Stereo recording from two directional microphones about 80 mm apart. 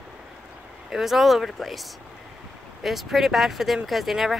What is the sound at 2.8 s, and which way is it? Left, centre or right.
Speech, centre.